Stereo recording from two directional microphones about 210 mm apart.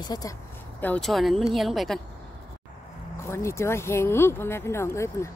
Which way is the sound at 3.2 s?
15° left (ahead or behind).